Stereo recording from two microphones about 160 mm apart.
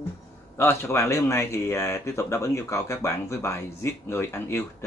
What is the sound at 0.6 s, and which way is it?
Speech, 15° left (ahead or behind).